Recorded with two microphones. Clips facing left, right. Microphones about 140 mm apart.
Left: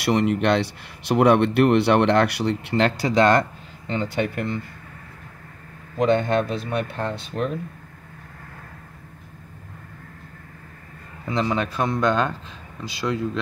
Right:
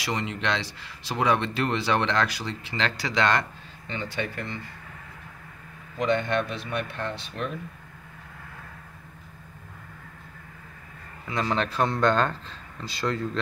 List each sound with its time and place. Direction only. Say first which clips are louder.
0.0 s speech: left 9 dB; 60° left (ahead or behind); by 4.2 s 40° left (ahead or behind)
5.9 s speech: left 5 dB; 45° left (ahead or behind)
11.3 s a man's voice: left 2 dB; 10° left (ahead or behind)